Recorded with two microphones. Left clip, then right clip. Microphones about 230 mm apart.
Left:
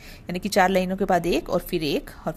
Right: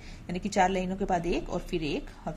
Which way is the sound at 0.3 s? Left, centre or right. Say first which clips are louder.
Left 6 dB; centre.